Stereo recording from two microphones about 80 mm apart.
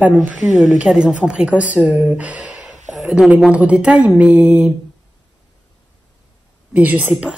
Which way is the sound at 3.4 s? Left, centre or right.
Centre.